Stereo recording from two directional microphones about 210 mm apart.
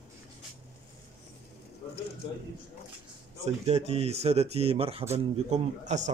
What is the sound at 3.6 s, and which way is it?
A man's voice, 30° right (ahead or behind).